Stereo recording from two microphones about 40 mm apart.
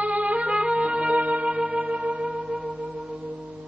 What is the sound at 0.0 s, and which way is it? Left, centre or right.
Music, right.